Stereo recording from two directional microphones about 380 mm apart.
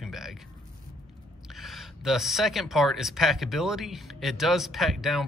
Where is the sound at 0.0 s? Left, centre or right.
Centre.